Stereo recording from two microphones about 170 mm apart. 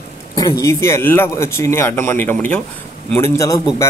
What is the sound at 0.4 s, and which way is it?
Speech, 20° left (ahead or behind).